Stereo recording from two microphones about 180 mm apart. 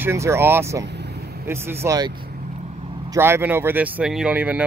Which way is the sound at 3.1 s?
15° right (ahead or behind).